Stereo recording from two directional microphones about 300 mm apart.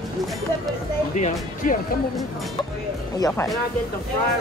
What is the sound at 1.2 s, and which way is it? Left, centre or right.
Speech, left.